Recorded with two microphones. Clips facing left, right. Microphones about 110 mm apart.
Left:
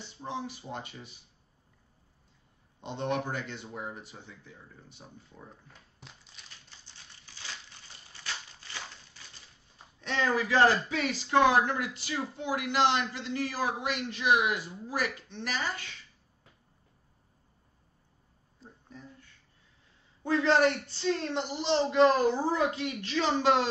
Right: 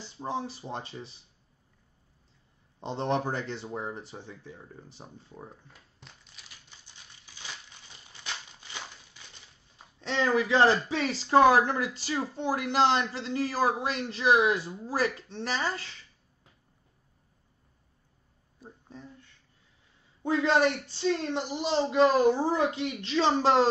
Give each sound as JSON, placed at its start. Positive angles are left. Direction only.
{"t": 0.0, "sound": "a man's voice", "side_deg": -35}
{"t": 2.8, "sound": "a man's voice", "side_deg": -35}
{"t": 5.7, "sound": "a sound", "side_deg": 0}
{"t": 8.2, "sound": "a sound", "side_deg": -15}
{"t": 9.9, "sound": "a man's voice", "side_deg": -25}
{"t": 20.2, "sound": "speech", "side_deg": -15}